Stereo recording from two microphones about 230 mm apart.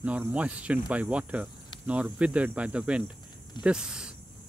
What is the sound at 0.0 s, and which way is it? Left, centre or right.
Speech, centre.